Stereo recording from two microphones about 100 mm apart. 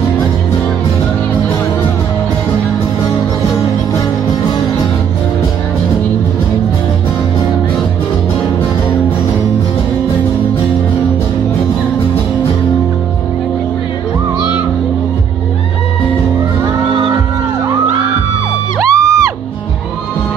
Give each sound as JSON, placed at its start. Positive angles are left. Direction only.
{"t": 18.8, "sound": "music", "side_deg": -30}